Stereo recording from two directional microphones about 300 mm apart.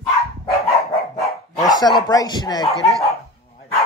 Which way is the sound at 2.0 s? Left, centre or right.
Centre.